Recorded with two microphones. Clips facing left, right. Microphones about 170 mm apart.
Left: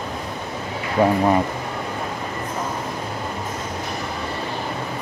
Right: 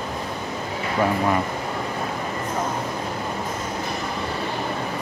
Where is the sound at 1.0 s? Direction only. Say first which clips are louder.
Left 5 dB; 20° left (ahead or behind).